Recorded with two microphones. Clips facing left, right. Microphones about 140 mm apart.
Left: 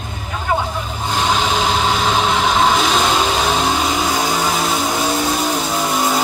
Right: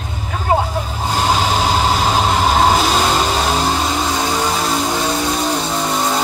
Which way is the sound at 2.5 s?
40° right (ahead or behind).